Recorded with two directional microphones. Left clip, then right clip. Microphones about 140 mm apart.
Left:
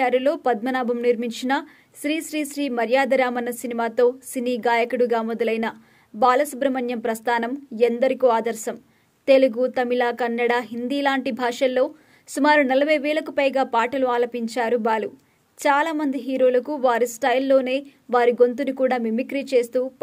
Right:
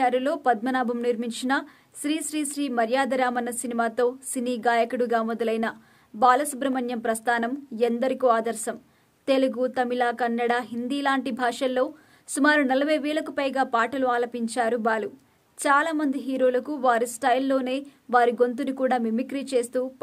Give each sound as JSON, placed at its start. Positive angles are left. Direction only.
{"t": 0.0, "sound": "speech", "side_deg": 20}